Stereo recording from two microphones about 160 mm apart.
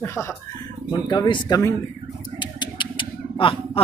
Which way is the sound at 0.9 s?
25° left (ahead or behind).